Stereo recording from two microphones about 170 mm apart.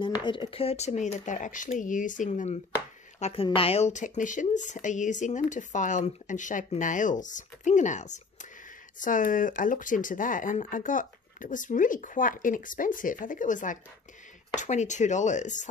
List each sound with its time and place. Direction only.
0.0 s a woman's voice: 25° left (ahead or behind); by 15.6 s 45° left (ahead or behind)